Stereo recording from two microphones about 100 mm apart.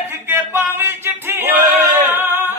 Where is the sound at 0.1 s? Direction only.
20° right (ahead or behind).